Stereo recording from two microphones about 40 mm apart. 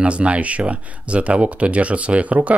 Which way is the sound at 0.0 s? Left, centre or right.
Right.